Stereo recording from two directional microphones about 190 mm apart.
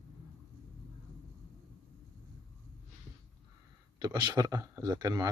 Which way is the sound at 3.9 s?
25° right (ahead or behind).